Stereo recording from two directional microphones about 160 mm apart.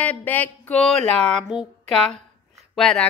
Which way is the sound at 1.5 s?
Centre (ahead or behind).